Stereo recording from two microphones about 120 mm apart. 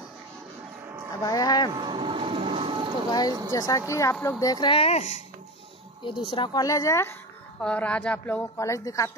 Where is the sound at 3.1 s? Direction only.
35° left (ahead or behind).